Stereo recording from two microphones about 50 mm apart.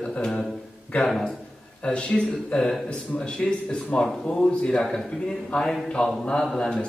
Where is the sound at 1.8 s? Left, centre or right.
Left.